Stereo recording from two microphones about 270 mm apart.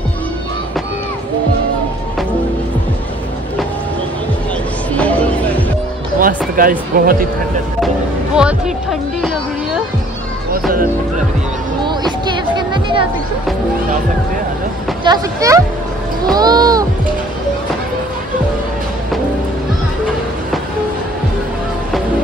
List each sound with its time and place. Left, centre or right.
4.9 s music: centre
6.1 s music: right
6.9 s speech: right
8.4 s speech: centre
11.8 s music: centre
15.0 s speech: centre